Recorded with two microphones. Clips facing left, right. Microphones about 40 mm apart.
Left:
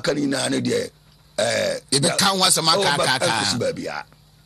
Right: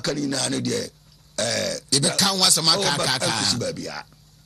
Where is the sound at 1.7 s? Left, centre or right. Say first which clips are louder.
Left 2 dB; centre.